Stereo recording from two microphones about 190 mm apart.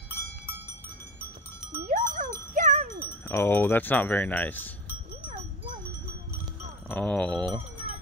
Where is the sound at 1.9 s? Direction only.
40° right (ahead or behind).